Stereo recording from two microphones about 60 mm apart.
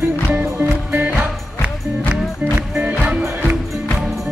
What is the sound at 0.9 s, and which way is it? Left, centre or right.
Music, right.